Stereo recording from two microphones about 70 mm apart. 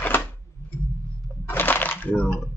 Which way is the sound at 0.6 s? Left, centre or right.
Left.